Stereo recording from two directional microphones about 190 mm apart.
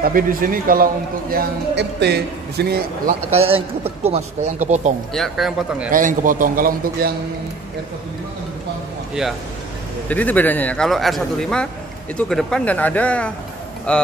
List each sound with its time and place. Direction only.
0.0 s a man's voice: 50° right (ahead or behind)
1.3 s a man's voice: 60° right (ahead or behind)
3.3 s speech: 30° right (ahead or behind)
5.1 s a man's voice: centre (ahead or behind)
5.9 s a man's voice: 45° right (ahead or behind)
9.2 s a man's voice: centre (ahead or behind)
10.0 s a man's voice: 10° left (ahead or behind)